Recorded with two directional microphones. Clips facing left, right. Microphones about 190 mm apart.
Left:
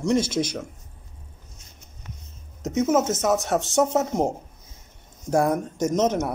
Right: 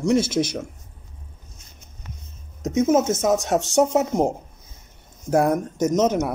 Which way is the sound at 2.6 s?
15° right (ahead or behind).